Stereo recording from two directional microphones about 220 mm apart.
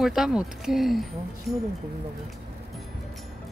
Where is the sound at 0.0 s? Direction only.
Centre (ahead or behind).